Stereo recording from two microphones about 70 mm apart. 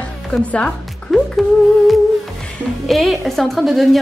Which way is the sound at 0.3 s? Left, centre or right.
Centre.